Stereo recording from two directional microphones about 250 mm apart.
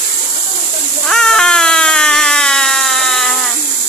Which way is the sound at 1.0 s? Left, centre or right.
Centre.